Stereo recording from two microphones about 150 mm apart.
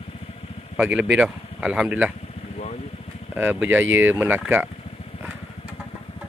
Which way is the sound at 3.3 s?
15° right (ahead or behind).